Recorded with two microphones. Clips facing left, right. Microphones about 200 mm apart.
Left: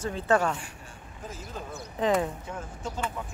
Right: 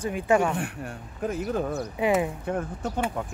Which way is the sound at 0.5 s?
60° right (ahead or behind).